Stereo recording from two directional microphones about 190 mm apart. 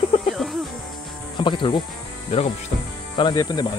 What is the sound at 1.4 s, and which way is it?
Speech, 25° left (ahead or behind).